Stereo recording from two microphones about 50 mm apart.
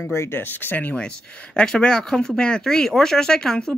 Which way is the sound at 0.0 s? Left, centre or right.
Left.